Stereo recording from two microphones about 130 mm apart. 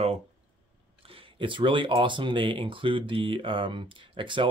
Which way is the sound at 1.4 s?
40° right (ahead or behind).